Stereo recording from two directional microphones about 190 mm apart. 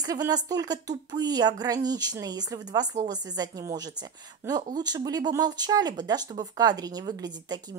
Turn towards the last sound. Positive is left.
turn(degrees=-20)  # may be behind; listen again after turning